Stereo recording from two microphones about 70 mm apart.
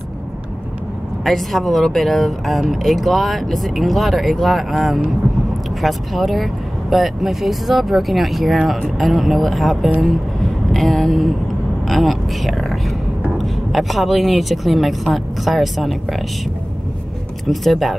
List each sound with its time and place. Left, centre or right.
1.2 s speech: centre
9.9 s music: centre
11.9 s a sound: centre
13.4 s speech: centre
17.5 s speech: centre